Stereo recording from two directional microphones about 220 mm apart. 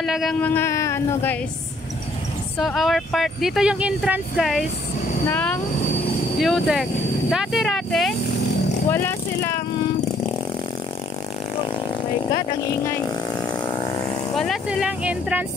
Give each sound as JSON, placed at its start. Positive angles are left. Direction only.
{"t": 0.0, "sound": "speech", "side_deg": 0}
{"t": 2.6, "sound": "speech", "side_deg": 0}
{"t": 8.9, "sound": "speech", "side_deg": 10}
{"t": 12.8, "sound": "vehicle", "side_deg": 20}
{"t": 14.3, "sound": "speech", "side_deg": 0}